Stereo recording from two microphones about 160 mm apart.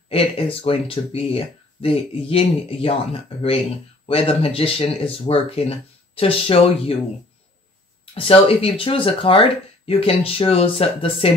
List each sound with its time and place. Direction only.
0.1 s speech: 35° left (ahead or behind)
8.0 s speech: 35° left (ahead or behind)